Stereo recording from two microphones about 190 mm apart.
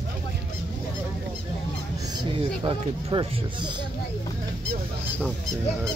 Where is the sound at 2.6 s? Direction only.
25° right (ahead or behind).